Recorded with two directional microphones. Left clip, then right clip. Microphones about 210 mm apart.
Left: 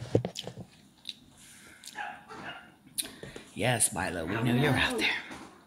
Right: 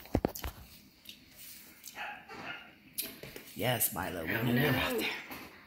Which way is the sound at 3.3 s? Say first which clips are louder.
Left 4 dB; 20° left (ahead or behind).